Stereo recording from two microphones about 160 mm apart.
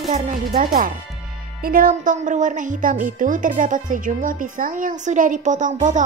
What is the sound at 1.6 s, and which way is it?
Speech, 65° right (ahead or behind).